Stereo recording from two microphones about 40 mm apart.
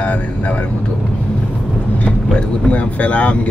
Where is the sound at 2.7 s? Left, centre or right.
Left.